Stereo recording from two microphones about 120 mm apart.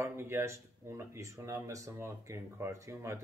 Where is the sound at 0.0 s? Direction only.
20° right (ahead or behind).